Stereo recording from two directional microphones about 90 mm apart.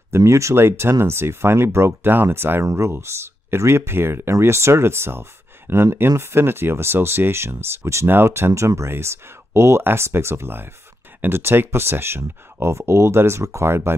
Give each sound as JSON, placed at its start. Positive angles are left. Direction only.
{"t": 0.1, "sound": "speech", "side_deg": -30}